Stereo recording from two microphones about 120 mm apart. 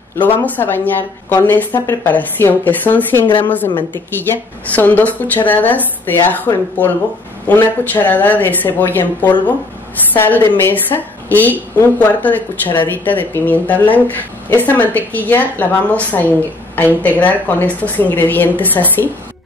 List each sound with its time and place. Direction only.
0.1 s a woman's voice: 15° left (ahead or behind)